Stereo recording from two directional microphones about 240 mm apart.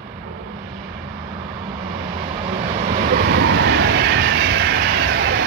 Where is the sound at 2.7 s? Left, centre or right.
Right.